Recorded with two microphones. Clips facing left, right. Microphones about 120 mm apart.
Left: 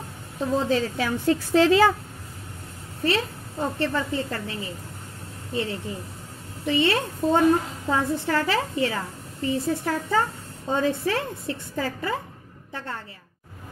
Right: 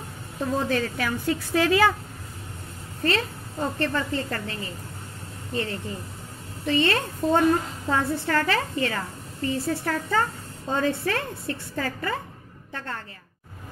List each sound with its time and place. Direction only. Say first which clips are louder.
0.4 s a woman's voice: left 2 dB; 20° left (ahead or behind)
3.0 s a woman's voice: left 1 dB; 15° left (ahead or behind)